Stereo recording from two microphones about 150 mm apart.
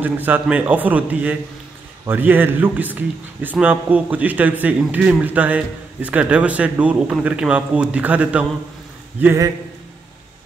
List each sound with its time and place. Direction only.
0.0 s a man's voice: 10° right (ahead or behind)